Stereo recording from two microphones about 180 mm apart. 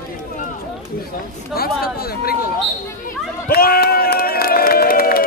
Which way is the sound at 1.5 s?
60° left (ahead or behind).